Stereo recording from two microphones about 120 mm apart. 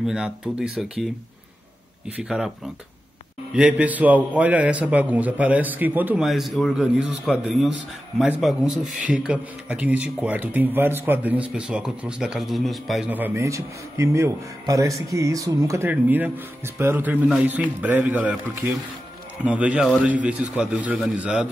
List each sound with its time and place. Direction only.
0.0 s a man's voice: 5° right (ahead or behind)
2.1 s speech: 5° right (ahead or behind)
3.5 s a man's voice: 10° right (ahead or behind)
6.2 s a man's voice: centre (ahead or behind)
13.1 s a man's voice: 20° right (ahead or behind)
19.4 s a man's voice: 10° right (ahead or behind)